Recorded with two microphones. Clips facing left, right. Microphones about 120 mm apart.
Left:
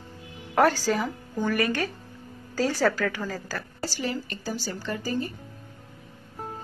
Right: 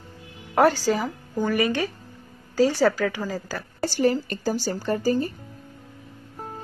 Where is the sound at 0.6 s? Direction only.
5° right (ahead or behind).